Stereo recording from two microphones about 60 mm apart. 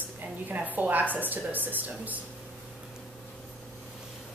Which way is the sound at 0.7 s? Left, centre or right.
Right.